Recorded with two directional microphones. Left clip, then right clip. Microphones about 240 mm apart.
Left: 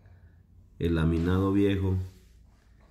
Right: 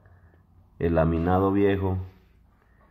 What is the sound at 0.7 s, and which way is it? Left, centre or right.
Speech, centre.